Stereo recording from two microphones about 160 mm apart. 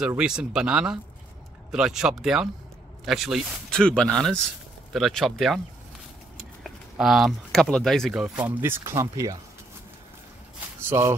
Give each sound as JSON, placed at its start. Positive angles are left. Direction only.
{"t": 0.0, "sound": "speech", "side_deg": -5}
{"t": 6.6, "sound": "speech", "side_deg": 0}
{"t": 10.9, "sound": "speech", "side_deg": -15}